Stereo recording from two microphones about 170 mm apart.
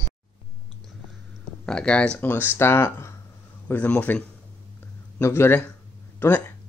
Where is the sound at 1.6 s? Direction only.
5° left (ahead or behind).